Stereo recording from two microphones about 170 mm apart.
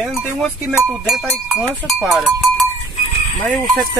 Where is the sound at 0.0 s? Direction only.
Centre (ahead or behind).